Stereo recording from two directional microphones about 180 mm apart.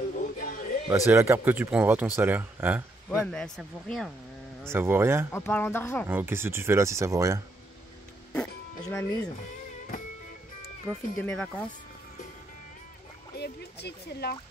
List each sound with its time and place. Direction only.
0.2 s music: 45° left (ahead or behind)
0.9 s speech: 15° right (ahead or behind)
3.3 s speech: centre (ahead or behind)
4.6 s speech: 15° right (ahead or behind)
5.3 s speech: 10° left (ahead or behind)
6.0 s speech: 10° right (ahead or behind)
8.9 s speech: 15° left (ahead or behind)
10.9 s speech: 5° left (ahead or behind)
13.4 s speech: 65° left (ahead or behind)